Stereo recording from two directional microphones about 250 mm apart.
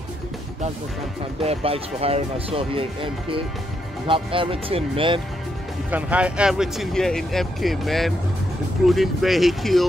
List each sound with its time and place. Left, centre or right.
1.4 s speech: right
5.9 s speech: centre